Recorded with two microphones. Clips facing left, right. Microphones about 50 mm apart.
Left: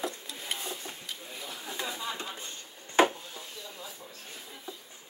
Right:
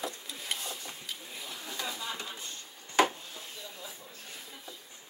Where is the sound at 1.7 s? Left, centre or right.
Left.